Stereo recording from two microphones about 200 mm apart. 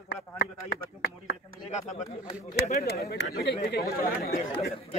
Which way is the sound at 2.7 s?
50° left (ahead or behind).